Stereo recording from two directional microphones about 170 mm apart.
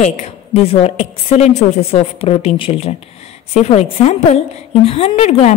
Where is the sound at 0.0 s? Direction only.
40° left (ahead or behind).